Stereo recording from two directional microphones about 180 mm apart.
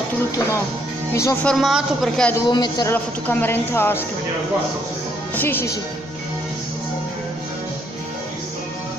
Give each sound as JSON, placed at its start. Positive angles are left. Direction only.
{"t": 1.1, "sound": "speech", "side_deg": 15}
{"t": 1.5, "sound": "a woman's voice", "side_deg": 0}
{"t": 2.5, "sound": "a man's voice", "side_deg": 25}
{"t": 2.9, "sound": "speech", "side_deg": 10}
{"t": 5.3, "sound": "speech", "side_deg": 10}